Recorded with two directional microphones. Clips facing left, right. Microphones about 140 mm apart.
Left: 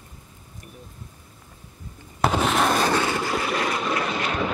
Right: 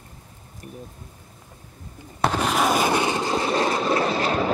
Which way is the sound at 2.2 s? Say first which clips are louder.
Even; centre (ahead or behind).